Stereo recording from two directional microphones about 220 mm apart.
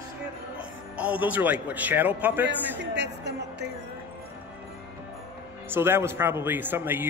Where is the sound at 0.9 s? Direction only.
5° right (ahead or behind).